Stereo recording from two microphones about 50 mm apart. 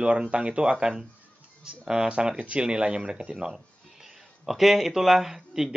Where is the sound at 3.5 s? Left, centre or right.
Centre.